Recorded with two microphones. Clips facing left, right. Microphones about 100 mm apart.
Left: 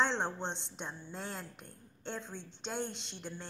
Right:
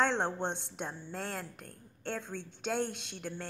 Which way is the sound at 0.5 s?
55° right (ahead or behind).